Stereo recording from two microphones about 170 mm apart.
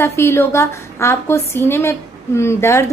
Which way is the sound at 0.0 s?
15° left (ahead or behind).